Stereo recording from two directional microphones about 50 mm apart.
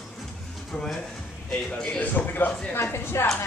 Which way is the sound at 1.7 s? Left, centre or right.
Centre.